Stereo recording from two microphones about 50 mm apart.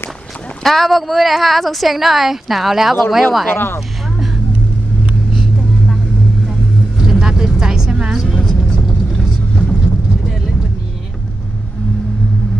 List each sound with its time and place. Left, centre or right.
0.7 s a woman's voice: centre
3.5 s speech: left
5.3 s vehicle: centre
8.4 s vehicle: centre
8.8 s vehicle: centre